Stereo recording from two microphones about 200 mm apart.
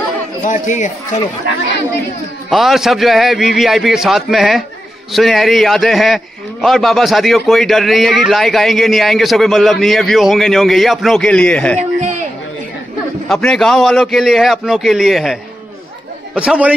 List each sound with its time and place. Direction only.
0.4 s a man's voice: 40° left (ahead or behind)
2.5 s a man's voice: centre (ahead or behind)
13.3 s a man's voice: centre (ahead or behind)
16.3 s a man's voice: 5° right (ahead or behind)